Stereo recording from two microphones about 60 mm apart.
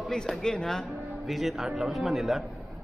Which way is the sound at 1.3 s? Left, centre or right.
Centre.